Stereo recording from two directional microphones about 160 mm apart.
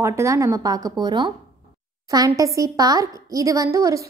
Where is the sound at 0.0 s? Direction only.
20° right (ahead or behind).